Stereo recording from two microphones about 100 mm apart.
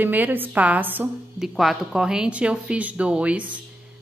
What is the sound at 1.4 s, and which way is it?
Speech, centre (ahead or behind).